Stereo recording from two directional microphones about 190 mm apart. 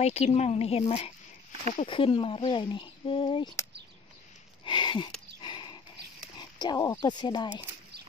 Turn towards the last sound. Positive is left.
turn(degrees=25)  # may be behind; listen again after turning